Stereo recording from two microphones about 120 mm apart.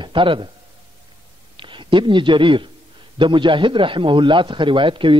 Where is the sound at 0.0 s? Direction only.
45° right (ahead or behind).